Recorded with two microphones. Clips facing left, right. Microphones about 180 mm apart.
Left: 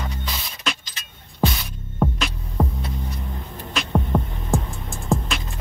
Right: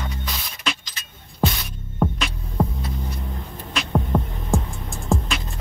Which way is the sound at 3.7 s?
Centre (ahead or behind).